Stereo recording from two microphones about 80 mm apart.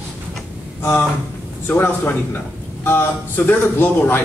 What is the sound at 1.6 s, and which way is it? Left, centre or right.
A man's voice, left.